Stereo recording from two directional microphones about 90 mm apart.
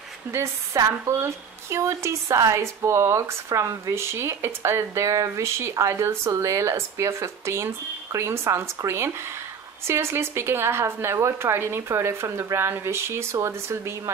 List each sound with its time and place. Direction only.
0.3 s a woman's voice: 35° right (ahead or behind)